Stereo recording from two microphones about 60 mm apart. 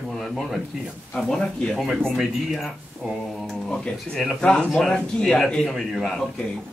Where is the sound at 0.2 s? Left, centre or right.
Centre.